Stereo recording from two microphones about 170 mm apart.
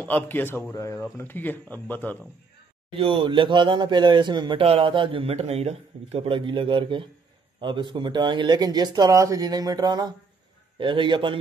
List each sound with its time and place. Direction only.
0.0 s speech: 10° left (ahead or behind)
2.9 s speech: 30° right (ahead or behind)